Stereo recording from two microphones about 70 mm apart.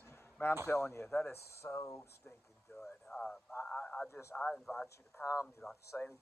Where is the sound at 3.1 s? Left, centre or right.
Centre.